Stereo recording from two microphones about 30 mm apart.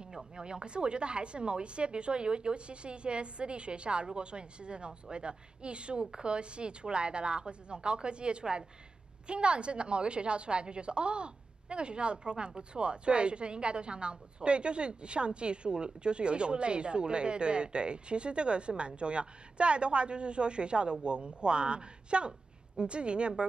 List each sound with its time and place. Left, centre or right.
0.4 s a woman's voice: right